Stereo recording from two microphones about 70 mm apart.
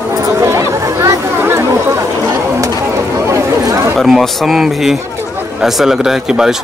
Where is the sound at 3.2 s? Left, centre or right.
Right.